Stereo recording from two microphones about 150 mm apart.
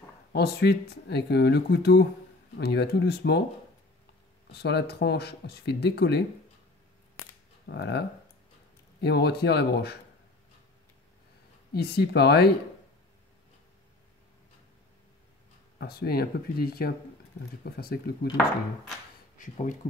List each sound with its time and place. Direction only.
0.3 s speech: 90° left
4.5 s speech: 90° left
7.6 s speech: 90° left
9.0 s speech: 90° left
11.7 s speech: 90° left
15.8 s speech: 90° left
19.5 s speech: 55° left (ahead or behind)